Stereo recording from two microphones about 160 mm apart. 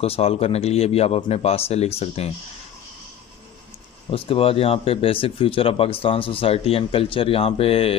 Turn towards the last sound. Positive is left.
turn(degrees=35)  # may be behind; listen again after turning